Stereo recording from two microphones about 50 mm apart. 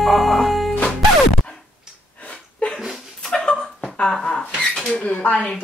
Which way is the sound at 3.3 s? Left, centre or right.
Centre.